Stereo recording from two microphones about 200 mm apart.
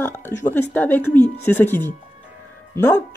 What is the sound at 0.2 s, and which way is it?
Speech, 10° left (ahead or behind).